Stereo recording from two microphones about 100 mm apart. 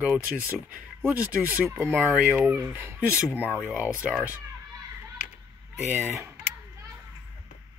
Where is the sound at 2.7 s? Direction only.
25° right (ahead or behind).